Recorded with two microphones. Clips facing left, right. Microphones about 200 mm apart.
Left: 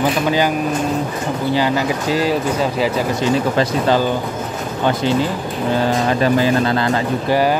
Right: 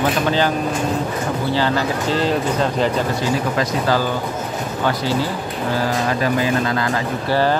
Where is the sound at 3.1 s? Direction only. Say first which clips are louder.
Left 3 dB; 20° left (ahead or behind).